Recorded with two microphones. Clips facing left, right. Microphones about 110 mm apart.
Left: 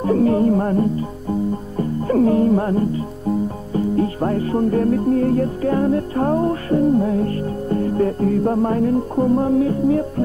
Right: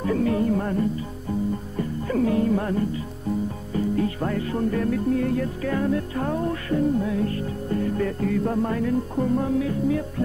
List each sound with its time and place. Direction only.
0.0 s music: 35° left (ahead or behind)
1.8 s speech: 40° left (ahead or behind)